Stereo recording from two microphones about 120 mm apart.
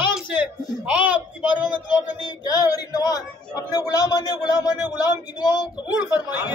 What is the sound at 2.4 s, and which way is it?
A man's voice, 30° left (ahead or behind).